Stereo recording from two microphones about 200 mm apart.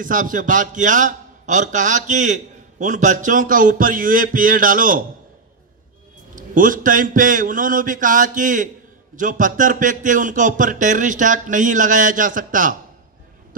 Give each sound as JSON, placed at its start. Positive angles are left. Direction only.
{"t": 0.0, "sound": "a man's voice", "side_deg": -40}
{"t": 6.3, "sound": "a man's voice", "side_deg": -40}